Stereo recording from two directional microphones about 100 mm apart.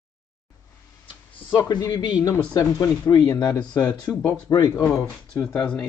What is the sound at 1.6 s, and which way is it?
Speech, 45° left (ahead or behind).